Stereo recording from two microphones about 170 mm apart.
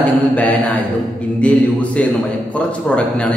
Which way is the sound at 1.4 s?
10° left (ahead or behind).